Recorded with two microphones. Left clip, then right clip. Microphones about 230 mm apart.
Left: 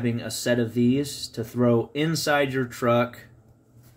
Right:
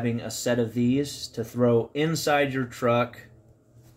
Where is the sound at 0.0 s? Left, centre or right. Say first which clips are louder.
Left 1 dB; centre.